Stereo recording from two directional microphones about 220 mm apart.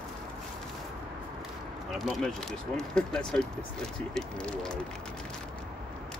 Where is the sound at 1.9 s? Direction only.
Centre (ahead or behind).